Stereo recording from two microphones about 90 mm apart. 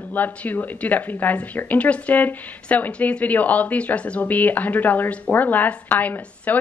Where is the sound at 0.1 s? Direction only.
20° left (ahead or behind).